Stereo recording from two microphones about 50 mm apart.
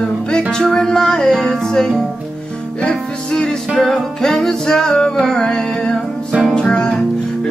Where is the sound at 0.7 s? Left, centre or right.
Centre.